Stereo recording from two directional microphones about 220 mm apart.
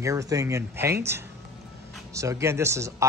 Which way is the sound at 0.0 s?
15° right (ahead or behind).